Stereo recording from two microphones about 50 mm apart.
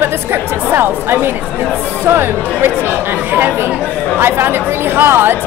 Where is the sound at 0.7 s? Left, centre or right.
Right.